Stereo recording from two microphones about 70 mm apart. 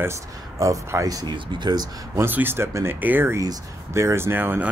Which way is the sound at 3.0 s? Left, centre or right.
Right.